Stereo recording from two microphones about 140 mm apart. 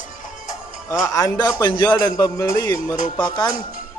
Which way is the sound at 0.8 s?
25° left (ahead or behind).